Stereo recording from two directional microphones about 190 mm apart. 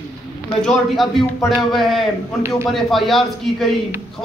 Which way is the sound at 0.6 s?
Centre (ahead or behind).